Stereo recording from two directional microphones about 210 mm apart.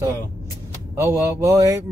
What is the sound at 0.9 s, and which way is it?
Speech, 15° right (ahead or behind).